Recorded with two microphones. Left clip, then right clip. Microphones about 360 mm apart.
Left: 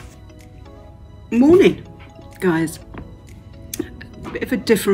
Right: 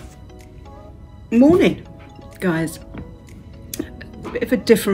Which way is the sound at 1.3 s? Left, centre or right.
Centre.